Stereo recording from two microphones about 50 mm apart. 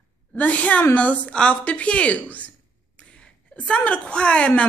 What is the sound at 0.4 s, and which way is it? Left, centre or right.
A woman's voice, left.